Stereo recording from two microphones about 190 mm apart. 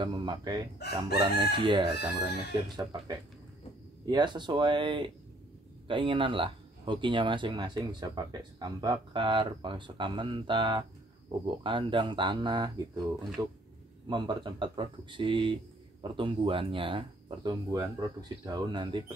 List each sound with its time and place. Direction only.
0.0 s speech: 25° right (ahead or behind)
0.8 s speech: 60° left (ahead or behind)
1.1 s speech: 25° right (ahead or behind)
4.0 s speech: 25° right (ahead or behind)